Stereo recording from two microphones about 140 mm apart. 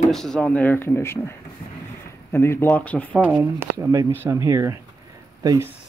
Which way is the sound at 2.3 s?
20° left (ahead or behind).